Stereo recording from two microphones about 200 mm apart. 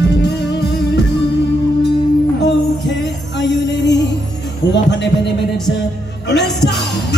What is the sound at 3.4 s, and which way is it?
Music, 60° left (ahead or behind).